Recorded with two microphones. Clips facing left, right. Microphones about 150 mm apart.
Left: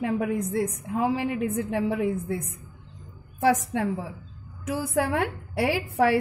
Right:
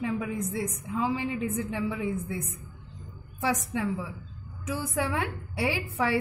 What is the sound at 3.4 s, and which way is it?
A woman's voice, 65° left (ahead or behind).